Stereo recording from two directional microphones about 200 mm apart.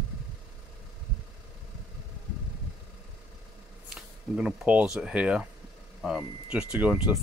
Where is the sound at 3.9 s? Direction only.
5° right (ahead or behind).